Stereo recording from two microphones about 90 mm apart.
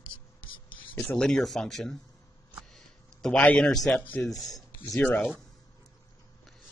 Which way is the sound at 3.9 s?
20° left (ahead or behind).